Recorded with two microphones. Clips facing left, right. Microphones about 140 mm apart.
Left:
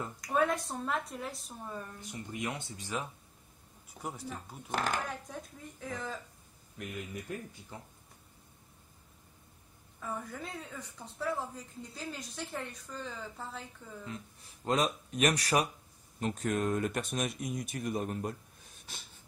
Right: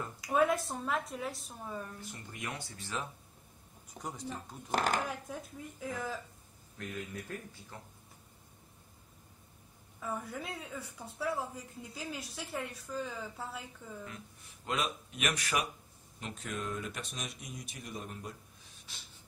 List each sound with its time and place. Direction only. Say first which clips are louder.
0.2 s a woman's voice: right 1 dB; 5° right (ahead or behind)
2.0 s speech: left 5 dB; 20° left (ahead or behind)
4.6 s speech: right 2 dB; 45° right (ahead or behind)
5.3 s a woman's voice: right 2 dB; 5° right (ahead or behind)
6.8 s speech: even; 15° left (ahead or behind)
9.9 s a woman's voice: right 1 dB; 5° right (ahead or behind)
14.0 s speech: left 4 dB; 35° left (ahead or behind); by 18.3 s 50° left (ahead or behind)